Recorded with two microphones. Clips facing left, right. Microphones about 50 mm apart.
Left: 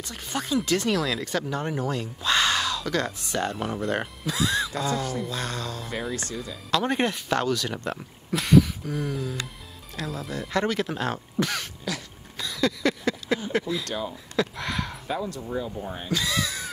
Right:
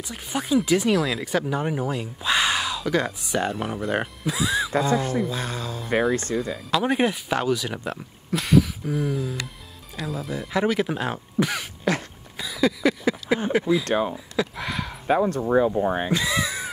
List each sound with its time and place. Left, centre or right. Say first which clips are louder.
0.1 s speech: right 4 dB; centre
6.3 s speech: right 9 dB; right
6.7 s speech: right 2 dB; centre
8.8 s a sound: right 4 dB; centre
9.9 s speech: right 2 dB; centre
11.9 s speech: right 9 dB; right
12.4 s a sound: right 3 dB; centre
13.5 s speech: right 6 dB; centre
13.8 s speech: right 8 dB; right
14.1 s a sound: right 1 dB; centre
15.0 s speech: right 14 dB; right
16.1 s a sound: right 3 dB; centre